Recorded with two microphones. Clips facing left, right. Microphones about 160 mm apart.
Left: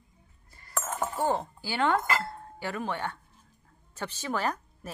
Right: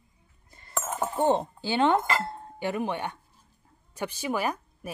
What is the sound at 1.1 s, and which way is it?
A woman's voice, 20° right (ahead or behind).